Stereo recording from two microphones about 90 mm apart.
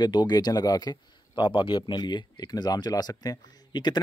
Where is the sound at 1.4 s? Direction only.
65° left (ahead or behind).